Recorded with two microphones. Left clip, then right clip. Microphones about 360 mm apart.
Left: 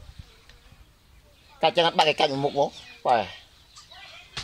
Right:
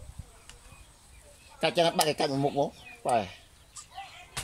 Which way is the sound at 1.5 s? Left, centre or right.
Centre.